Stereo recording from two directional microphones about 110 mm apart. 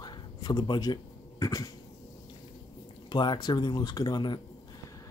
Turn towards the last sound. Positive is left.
turn(degrees=40)  # may be behind; listen again after turning